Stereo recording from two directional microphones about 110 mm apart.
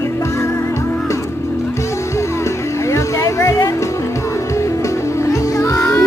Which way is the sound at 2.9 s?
25° left (ahead or behind).